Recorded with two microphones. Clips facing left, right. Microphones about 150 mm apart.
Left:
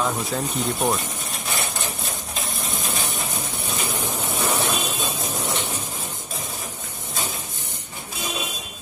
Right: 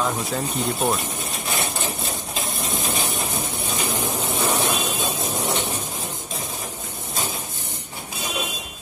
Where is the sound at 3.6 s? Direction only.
10° right (ahead or behind).